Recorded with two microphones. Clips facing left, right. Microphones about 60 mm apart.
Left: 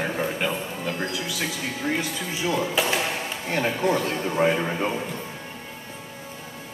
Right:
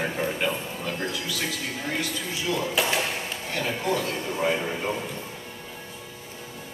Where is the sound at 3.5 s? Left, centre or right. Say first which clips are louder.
Left 4 dB; left.